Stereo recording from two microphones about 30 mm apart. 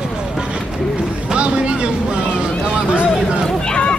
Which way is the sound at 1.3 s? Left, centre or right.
Right.